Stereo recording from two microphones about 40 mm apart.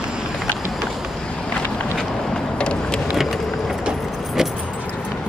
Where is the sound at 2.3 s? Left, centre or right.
Left.